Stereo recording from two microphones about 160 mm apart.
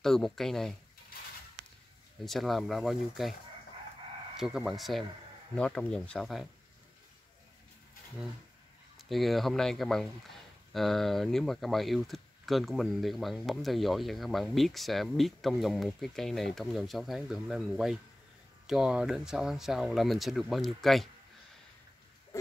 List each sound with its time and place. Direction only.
0.0 s speech: centre (ahead or behind)
2.2 s speech: centre (ahead or behind)
4.4 s speech: 5° right (ahead or behind)
8.9 s speech: centre (ahead or behind)